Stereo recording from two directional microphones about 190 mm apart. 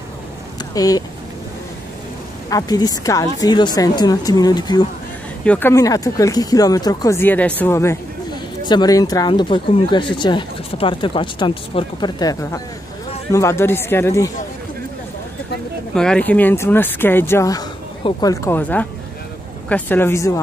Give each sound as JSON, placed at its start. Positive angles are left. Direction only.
{"t": 0.7, "sound": "speech", "side_deg": 20}
{"t": 2.5, "sound": "speech", "side_deg": 20}
{"t": 5.4, "sound": "speech", "side_deg": 10}
{"t": 15.9, "sound": "speech", "side_deg": 5}